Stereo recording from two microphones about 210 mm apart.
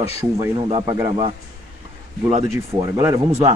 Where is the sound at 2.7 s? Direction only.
15° right (ahead or behind).